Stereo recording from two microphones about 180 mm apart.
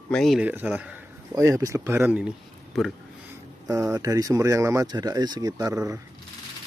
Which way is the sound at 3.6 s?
15° right (ahead or behind).